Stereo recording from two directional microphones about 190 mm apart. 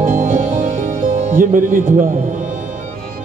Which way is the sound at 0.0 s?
45° right (ahead or behind).